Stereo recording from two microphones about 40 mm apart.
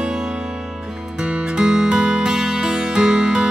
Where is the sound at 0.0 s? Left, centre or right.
Centre.